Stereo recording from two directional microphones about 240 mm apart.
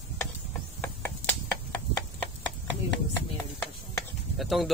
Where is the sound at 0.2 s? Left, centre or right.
Centre.